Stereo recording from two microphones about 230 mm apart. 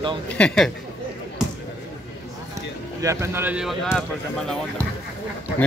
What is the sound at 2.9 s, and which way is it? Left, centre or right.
Speech, centre.